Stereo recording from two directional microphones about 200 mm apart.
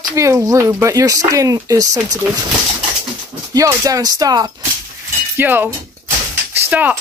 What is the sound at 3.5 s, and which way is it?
Speech, 15° right (ahead or behind).